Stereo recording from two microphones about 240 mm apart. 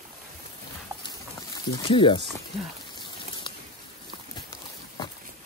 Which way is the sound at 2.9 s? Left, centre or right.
Centre.